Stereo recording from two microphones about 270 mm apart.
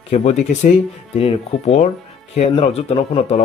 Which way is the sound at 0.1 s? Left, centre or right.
Left.